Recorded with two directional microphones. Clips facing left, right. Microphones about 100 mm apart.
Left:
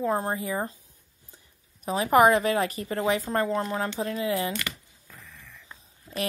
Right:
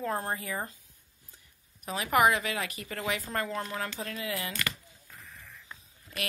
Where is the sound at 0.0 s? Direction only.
20° left (ahead or behind).